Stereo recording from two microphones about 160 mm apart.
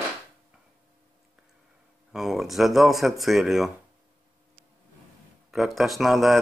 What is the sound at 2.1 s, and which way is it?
Speech, centre (ahead or behind).